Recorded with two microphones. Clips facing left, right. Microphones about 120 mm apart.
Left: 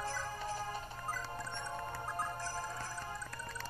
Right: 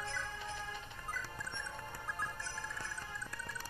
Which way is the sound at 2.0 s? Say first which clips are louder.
Left 4 dB; 40° left (ahead or behind).